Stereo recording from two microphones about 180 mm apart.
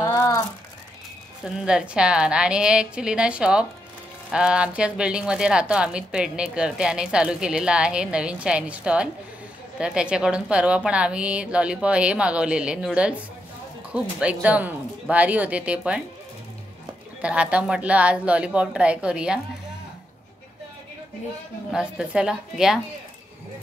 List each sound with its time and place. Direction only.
0.0 s a sound: 20° left (ahead or behind)
1.4 s a woman's voice: 5° right (ahead or behind)
17.2 s a woman's voice: 5° right (ahead or behind)
21.7 s speech: 5° right (ahead or behind)